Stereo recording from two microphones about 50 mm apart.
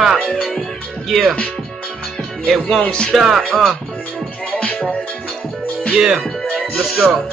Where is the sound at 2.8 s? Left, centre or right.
Centre.